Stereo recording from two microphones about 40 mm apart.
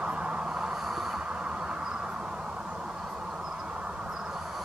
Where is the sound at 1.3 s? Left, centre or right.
Right.